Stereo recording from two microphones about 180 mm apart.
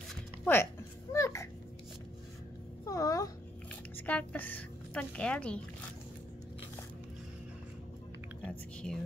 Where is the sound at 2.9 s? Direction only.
20° left (ahead or behind).